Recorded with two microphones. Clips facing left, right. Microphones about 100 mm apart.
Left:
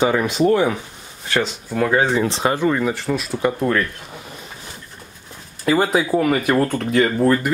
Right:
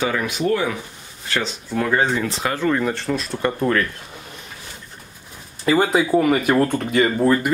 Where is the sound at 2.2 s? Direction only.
25° left (ahead or behind).